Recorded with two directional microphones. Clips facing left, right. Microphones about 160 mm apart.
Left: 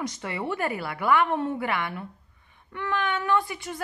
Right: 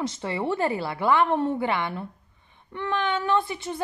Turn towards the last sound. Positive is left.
turn(degrees=-25)  # may be behind; listen again after turning